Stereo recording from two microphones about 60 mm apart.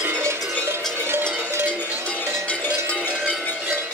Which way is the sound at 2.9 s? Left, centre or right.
Left.